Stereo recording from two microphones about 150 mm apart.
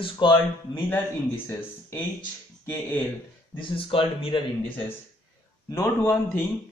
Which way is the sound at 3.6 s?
40° left (ahead or behind).